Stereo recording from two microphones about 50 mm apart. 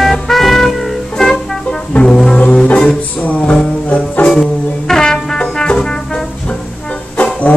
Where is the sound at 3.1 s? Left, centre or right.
Left.